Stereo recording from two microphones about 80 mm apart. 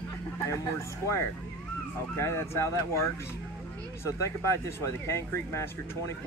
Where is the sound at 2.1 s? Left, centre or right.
Left.